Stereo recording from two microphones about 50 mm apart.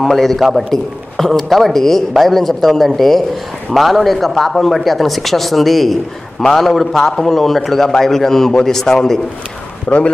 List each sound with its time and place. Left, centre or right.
0.0 s a man's voice: centre
9.8 s speech: left